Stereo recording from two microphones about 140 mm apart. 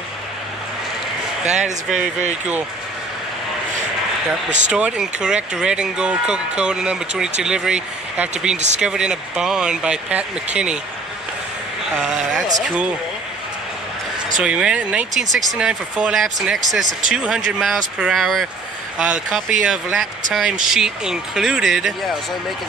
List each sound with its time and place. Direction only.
1.4 s speech: 55° right (ahead or behind)
4.7 s speech: 5° right (ahead or behind)
8.5 s speech: 55° right (ahead or behind)
8.8 s speech: 5° right (ahead or behind)
12.0 s speech: 5° right (ahead or behind)
14.4 s speech: 5° right (ahead or behind)
19.6 s speech: centre (ahead or behind)